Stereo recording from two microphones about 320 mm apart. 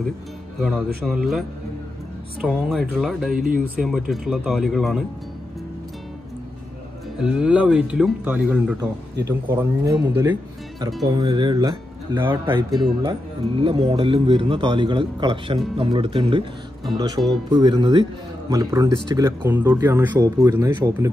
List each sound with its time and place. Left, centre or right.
1.0 s speech: centre
2.4 s speech: centre
3.3 s speech: right
3.8 s speech: centre
7.2 s speech: centre